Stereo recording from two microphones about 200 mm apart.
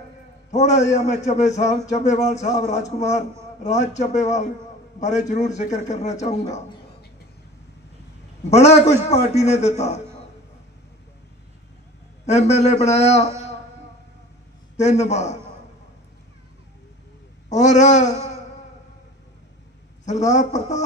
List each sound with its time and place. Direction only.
0.5 s a man's voice: 35° left (ahead or behind)
8.5 s a man's voice: 35° left (ahead or behind)
12.3 s a man's voice: 35° left (ahead or behind)
14.8 s a man's voice: 35° left (ahead or behind)
17.5 s a man's voice: 35° left (ahead or behind)
20.1 s a man's voice: 35° left (ahead or behind)